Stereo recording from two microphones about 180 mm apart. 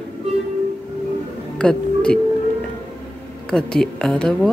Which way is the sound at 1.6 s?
5° left (ahead or behind).